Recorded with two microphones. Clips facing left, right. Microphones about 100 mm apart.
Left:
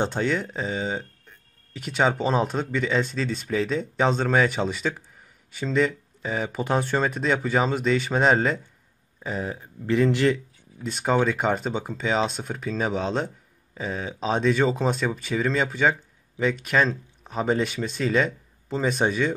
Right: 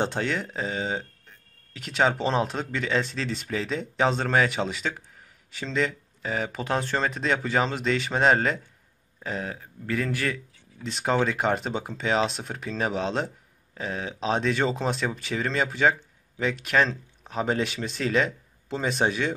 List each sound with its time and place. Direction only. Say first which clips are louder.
0.0 s speech: left 2 dB; 5° right (ahead or behind); by 10.4 s 25° left (ahead or behind)
10.8 s speech: left 2 dB; 5° left (ahead or behind)